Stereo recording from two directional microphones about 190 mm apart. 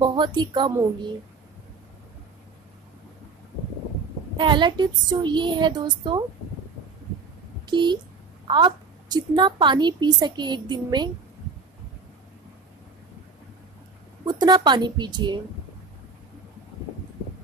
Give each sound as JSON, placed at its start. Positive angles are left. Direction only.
{"t": 0.0, "sound": "a woman's voice", "side_deg": -25}
{"t": 4.4, "sound": "a woman's voice", "side_deg": -25}
{"t": 7.6, "sound": "a woman's voice", "side_deg": -25}
{"t": 14.2, "sound": "a woman's voice", "side_deg": -20}